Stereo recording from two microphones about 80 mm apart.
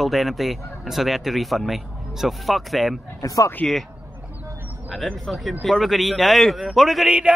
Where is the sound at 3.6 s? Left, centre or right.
Centre.